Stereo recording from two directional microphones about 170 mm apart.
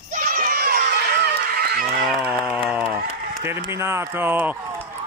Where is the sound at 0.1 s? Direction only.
50° right (ahead or behind).